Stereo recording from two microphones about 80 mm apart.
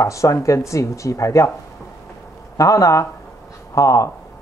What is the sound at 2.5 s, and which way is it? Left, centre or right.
Speech, left.